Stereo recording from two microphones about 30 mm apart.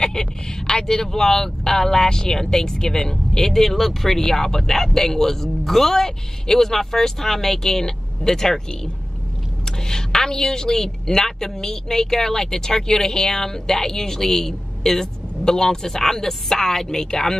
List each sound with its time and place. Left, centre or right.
0.0 s speech: left
9.7 s speech: centre